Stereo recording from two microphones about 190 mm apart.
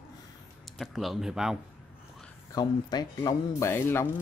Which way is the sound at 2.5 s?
20° left (ahead or behind).